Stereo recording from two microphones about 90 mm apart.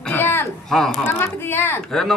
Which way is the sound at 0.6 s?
5° left (ahead or behind).